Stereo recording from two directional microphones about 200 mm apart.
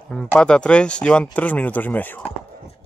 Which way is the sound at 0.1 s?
5° left (ahead or behind).